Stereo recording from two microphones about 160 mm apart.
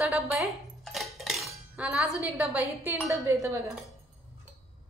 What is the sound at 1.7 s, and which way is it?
A woman's voice, 5° right (ahead or behind).